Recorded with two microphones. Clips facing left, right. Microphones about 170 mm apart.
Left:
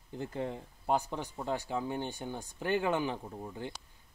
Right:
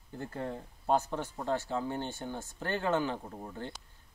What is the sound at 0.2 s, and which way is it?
Speech, 15° left (ahead or behind).